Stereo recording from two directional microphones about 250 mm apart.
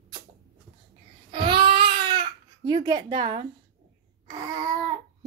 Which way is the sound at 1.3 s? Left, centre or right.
Centre.